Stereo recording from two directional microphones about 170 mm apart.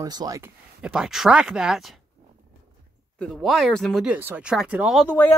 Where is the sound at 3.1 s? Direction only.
Centre (ahead or behind).